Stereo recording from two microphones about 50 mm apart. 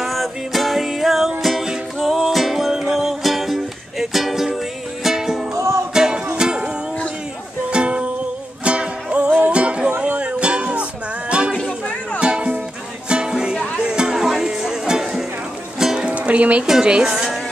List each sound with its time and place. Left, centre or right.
0.0 s music: centre
5.5 s music: right
5.9 s music: centre
7.7 s music: right
16.1 s music: right
16.8 s speech: centre